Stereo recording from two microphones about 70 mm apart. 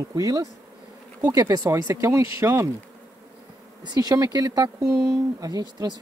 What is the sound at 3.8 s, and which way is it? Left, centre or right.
Speech, right.